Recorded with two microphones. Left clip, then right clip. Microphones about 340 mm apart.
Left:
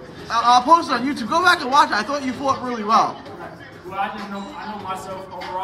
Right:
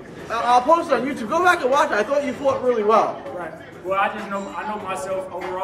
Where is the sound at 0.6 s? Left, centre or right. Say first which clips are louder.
Left 2 dB; centre.